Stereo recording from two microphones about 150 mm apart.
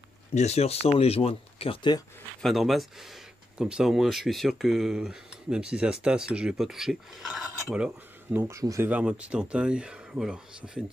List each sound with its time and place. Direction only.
0.3 s speech: 50° left (ahead or behind); by 2.0 s 30° left (ahead or behind)
2.4 s speech: centre (ahead or behind)
8.4 s speech: 20° right (ahead or behind)
8.9 s speech: 5° right (ahead or behind)